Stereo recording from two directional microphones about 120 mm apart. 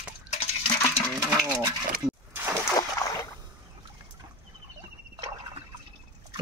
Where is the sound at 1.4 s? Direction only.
30° right (ahead or behind).